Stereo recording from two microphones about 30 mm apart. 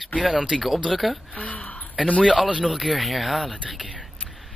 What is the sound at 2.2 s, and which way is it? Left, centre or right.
Speech, right.